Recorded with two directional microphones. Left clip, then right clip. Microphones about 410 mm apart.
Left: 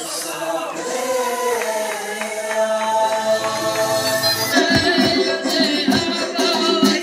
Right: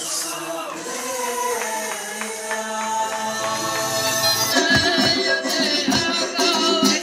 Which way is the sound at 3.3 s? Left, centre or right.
Centre.